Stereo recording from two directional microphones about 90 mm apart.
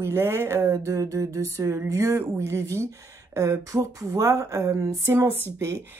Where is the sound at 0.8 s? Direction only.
35° right (ahead or behind).